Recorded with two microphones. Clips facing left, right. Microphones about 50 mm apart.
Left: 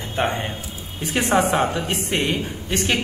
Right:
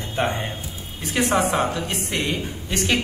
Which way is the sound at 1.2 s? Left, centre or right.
Left.